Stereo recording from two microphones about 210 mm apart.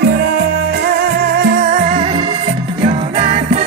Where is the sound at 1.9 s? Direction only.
20° right (ahead or behind).